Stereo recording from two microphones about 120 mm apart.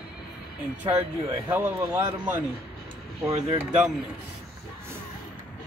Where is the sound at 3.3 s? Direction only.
60° right (ahead or behind).